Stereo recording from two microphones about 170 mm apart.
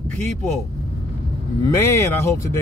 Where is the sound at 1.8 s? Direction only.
15° left (ahead or behind).